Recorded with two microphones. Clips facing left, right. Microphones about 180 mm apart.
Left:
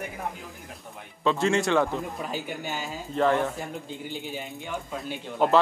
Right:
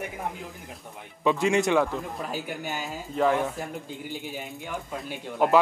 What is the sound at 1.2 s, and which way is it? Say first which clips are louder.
Speech: right 1 dB; 15° right (ahead or behind).